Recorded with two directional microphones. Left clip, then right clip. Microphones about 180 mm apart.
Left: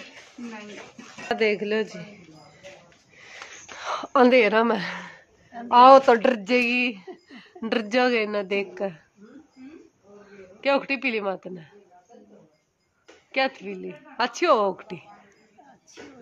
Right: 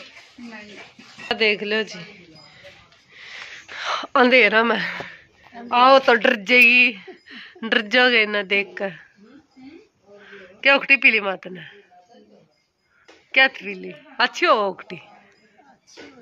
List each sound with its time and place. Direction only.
1.3 s speech: centre (ahead or behind)
3.2 s a sound: 5° left (ahead or behind)
5.0 s a sound: 20° left (ahead or behind)
6.0 s speech: centre (ahead or behind)
10.6 s speech: centre (ahead or behind)
13.3 s speech: centre (ahead or behind)